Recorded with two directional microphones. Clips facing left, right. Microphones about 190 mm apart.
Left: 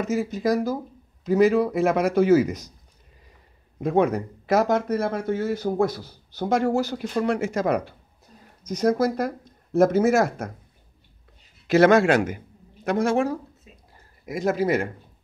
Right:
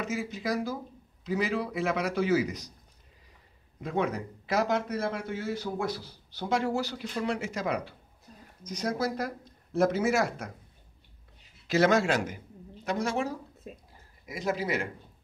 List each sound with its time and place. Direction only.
0.0 s speech: 40° left (ahead or behind)
3.8 s speech: 50° left (ahead or behind)
11.6 s a man's voice: 60° left (ahead or behind)
13.7 s speech: 50° right (ahead or behind)
14.2 s speech: 50° left (ahead or behind)